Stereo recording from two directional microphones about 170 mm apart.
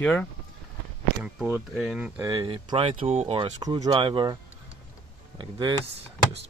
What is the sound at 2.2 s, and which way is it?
Speech, 25° right (ahead or behind).